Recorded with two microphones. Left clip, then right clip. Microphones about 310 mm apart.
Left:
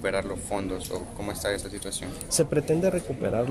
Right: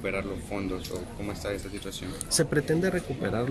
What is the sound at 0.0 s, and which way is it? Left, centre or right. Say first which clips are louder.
Speech: left 4 dB; left.